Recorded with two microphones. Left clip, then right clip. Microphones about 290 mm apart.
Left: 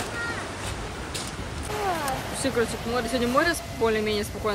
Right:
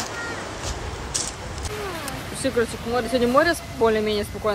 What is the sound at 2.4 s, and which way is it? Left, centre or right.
Speech, centre.